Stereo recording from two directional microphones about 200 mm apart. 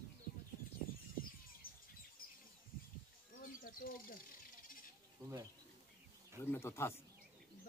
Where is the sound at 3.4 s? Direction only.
45° left (ahead or behind).